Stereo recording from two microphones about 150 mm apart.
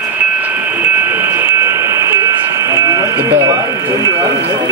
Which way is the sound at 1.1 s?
15° right (ahead or behind).